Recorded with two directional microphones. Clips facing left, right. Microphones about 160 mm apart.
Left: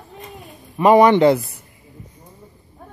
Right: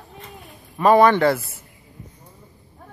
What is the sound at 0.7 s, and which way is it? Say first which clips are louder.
Speech: left 3 dB; 15° left (ahead or behind).